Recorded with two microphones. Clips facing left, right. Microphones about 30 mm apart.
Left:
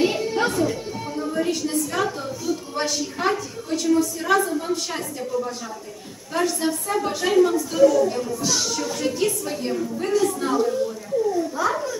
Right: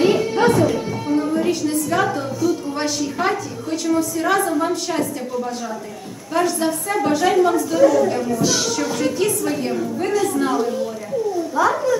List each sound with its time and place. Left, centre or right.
0.0 s music: centre
0.5 s music: centre
1.3 s a sound: centre
2.4 s a woman's voice: centre; by 4.7 s right
6.3 s a woman's voice: centre
8.5 s speech: right
8.7 s a woman's voice: right